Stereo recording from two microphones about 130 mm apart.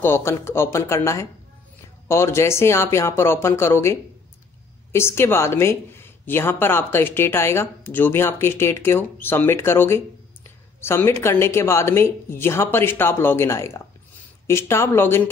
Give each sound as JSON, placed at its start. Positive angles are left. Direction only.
{"t": 0.0, "sound": "speech", "side_deg": 20}